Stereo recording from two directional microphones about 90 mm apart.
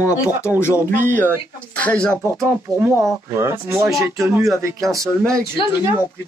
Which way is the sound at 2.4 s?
30° right (ahead or behind).